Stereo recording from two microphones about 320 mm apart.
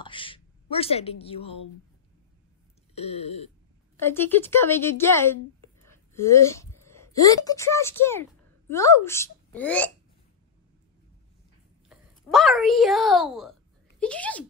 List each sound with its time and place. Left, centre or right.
0.0 s a woman's voice: centre
2.9 s a sound: centre
3.9 s speech: centre
5.9 s a sound: centre
7.2 s a woman's voice: centre
11.9 s a woman's voice: centre